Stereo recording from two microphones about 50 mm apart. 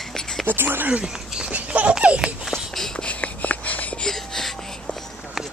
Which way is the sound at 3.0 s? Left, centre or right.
Left.